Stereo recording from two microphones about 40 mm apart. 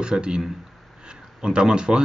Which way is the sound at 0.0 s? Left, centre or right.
Right.